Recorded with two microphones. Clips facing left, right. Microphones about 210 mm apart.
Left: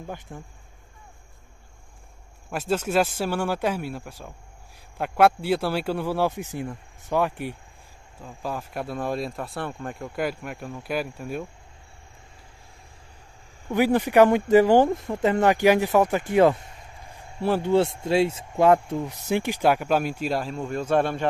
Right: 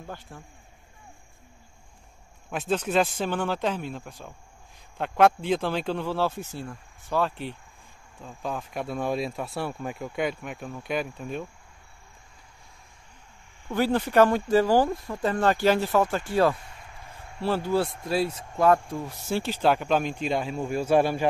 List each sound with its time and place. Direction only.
2.7 s speech: 10° left (ahead or behind)
13.7 s a man's voice: 15° left (ahead or behind); by 21.3 s 5° right (ahead or behind)